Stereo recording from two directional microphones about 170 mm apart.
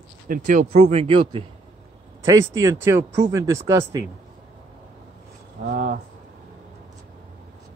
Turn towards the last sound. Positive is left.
turn(degrees=-55)  # may be behind; listen again after turning